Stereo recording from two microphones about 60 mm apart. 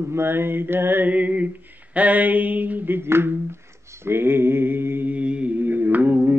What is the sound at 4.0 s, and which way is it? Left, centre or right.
Mantra, right.